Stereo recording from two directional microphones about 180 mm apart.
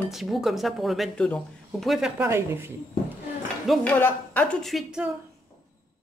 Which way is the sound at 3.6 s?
5° left (ahead or behind).